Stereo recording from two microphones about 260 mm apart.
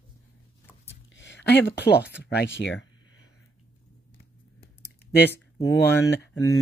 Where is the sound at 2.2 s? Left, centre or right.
Left.